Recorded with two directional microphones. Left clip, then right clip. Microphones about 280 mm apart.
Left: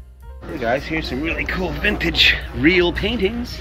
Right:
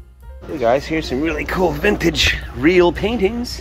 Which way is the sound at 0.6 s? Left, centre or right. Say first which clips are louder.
Right 4 dB; centre.